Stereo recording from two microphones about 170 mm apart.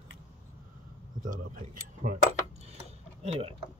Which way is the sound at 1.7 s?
45° right (ahead or behind).